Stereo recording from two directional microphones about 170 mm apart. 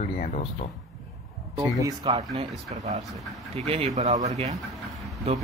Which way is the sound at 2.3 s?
45° right (ahead or behind).